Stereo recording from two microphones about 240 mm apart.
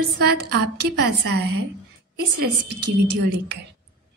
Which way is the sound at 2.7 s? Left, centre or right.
Right.